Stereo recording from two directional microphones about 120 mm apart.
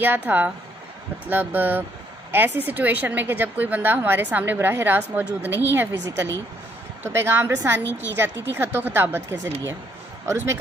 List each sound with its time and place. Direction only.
0.0 s a woman's voice: 15° right (ahead or behind)